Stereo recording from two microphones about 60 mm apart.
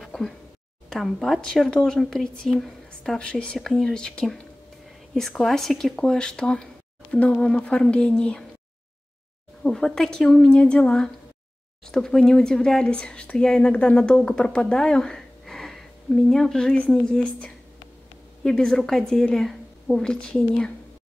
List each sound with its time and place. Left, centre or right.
0.0 s a sound: centre
1.0 s speech: centre
1.4 s speech: centre
9.6 s speech: centre
10.4 s speech: centre
18.4 s a woman's voice: centre